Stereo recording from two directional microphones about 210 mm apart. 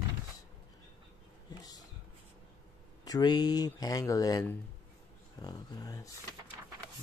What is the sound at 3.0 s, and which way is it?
Speech, 20° left (ahead or behind).